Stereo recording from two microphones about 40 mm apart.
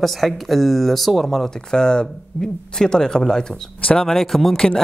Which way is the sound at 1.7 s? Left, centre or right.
Centre.